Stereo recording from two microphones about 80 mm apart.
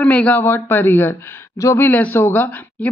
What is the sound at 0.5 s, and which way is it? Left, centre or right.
Speech, left.